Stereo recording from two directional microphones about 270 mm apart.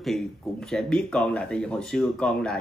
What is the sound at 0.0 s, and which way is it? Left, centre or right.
Speech, centre.